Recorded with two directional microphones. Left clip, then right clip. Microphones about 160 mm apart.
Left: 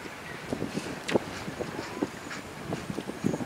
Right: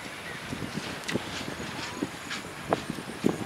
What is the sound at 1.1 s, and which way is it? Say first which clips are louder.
Vehicle: left 6 dB; centre (ahead or behind).